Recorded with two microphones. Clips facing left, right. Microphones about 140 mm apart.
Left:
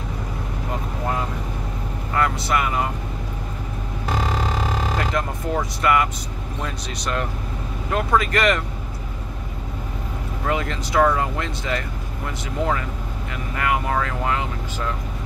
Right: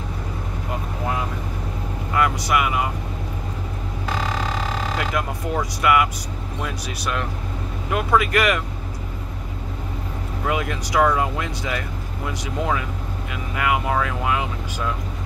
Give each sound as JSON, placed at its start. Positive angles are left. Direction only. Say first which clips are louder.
{"t": 2.1, "sound": "vehicle", "louder": "right 1 dB", "side_deg": -15}
{"t": 5.2, "sound": "music", "louder": "even", "side_deg": -10}
{"t": 5.8, "sound": "speech", "louder": "right 2 dB", "side_deg": -10}
{"t": 10.4, "sound": "speech", "louder": "even", "side_deg": -15}